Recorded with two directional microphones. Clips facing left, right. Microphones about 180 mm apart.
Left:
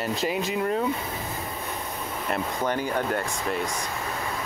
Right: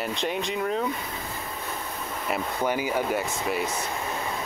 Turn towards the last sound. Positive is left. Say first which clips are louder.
# right 1 dB
turn(degrees=-5)  # may be behind; listen again after turning